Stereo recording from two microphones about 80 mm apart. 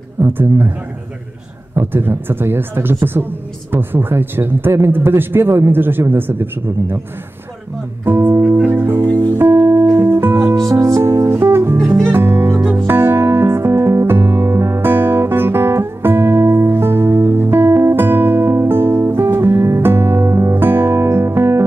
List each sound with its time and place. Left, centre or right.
0.2 s a woman's voice: right
1.8 s a woman's voice: right
8.0 s music: right
10.7 s music: right